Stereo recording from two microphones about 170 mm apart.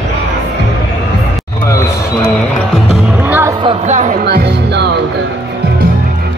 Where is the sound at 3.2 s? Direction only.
15° right (ahead or behind).